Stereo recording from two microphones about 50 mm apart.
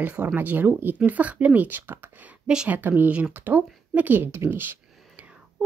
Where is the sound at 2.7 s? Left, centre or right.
Right.